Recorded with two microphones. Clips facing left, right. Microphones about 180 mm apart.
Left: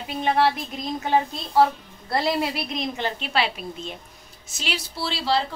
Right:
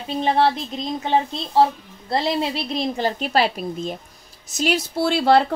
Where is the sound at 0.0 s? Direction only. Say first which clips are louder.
Right 2 dB; 30° right (ahead or behind).